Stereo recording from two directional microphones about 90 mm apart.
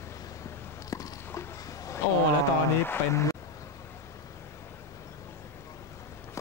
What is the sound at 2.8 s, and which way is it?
Speech, 30° left (ahead or behind).